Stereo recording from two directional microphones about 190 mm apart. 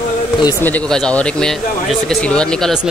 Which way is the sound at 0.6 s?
5° left (ahead or behind).